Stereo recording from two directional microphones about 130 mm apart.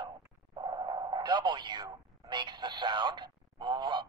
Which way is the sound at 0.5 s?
35° right (ahead or behind).